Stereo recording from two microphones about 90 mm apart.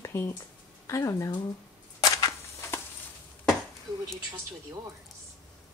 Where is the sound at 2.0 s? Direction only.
45° left (ahead or behind).